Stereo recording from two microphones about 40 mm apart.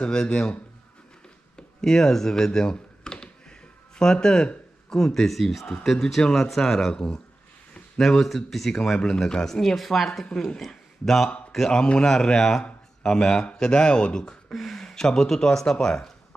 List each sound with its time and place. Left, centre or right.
0.0 s speech: centre
1.8 s a sound: centre
4.8 s speech: centre
8.0 s speech: centre
9.0 s speech: centre
10.2 s a man's voice: centre
14.5 s speech: centre